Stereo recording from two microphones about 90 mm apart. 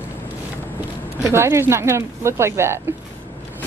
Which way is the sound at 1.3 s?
30° right (ahead or behind).